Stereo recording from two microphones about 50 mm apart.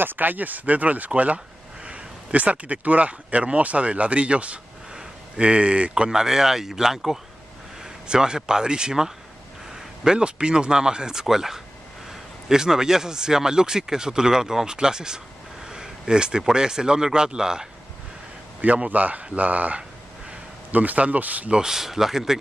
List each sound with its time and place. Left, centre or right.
0.0 s speech: right
6.0 s speech: centre
18.6 s speech: right
21.5 s speech: centre